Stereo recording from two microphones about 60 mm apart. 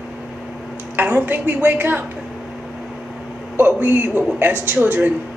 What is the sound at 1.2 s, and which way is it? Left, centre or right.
Speech, right.